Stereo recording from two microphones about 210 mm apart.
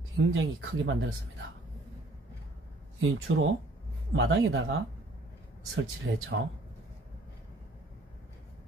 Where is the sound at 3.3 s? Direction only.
70° right (ahead or behind).